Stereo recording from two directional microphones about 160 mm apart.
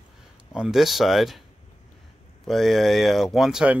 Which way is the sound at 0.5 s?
5° right (ahead or behind).